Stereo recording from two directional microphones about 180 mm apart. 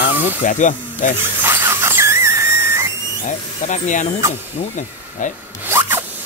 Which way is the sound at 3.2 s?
45° left (ahead or behind).